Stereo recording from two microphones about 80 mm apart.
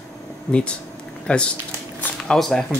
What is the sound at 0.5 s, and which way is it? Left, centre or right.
Speech, left.